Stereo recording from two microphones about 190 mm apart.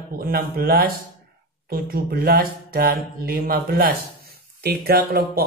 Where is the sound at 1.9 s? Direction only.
55° right (ahead or behind).